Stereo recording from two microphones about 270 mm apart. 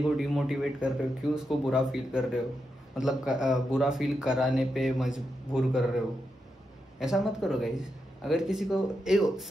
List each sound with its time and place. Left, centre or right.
0.2 s speech: centre
7.0 s speech: centre